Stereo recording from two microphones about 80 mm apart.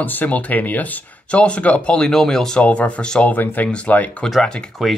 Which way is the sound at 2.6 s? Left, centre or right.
Centre.